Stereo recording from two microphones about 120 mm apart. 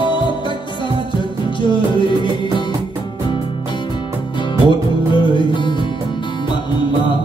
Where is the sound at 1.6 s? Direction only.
40° left (ahead or behind).